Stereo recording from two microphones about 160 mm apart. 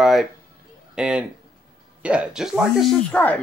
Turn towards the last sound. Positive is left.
turn(degrees=10)  # may be behind; listen again after turning